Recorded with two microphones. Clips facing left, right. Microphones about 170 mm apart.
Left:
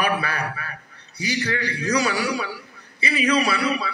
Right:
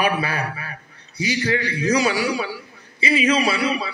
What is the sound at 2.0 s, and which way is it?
A man's voice, 25° right (ahead or behind).